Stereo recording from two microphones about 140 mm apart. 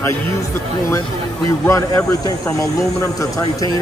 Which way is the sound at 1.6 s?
20° left (ahead or behind).